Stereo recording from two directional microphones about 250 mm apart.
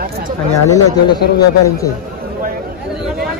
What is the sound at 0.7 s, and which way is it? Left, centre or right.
A man's voice, centre.